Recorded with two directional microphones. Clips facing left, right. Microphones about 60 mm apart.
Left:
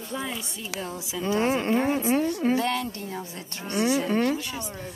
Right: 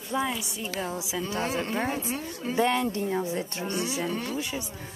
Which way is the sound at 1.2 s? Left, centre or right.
Left.